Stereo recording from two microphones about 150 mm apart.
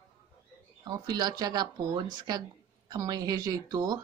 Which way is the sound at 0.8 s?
25° right (ahead or behind).